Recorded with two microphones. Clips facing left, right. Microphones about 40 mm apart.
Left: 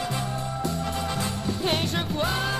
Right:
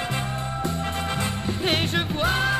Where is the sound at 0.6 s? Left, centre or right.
Right.